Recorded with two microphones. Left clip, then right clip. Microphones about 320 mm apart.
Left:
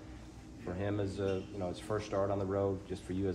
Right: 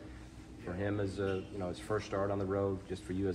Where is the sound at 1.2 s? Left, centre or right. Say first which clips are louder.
Left 1 dB; centre.